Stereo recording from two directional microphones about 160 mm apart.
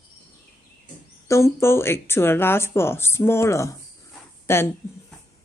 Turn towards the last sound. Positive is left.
turn(degrees=15)  # may be behind; listen again after turning